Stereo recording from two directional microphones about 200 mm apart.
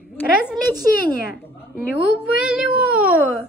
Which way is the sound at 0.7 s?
45° left (ahead or behind).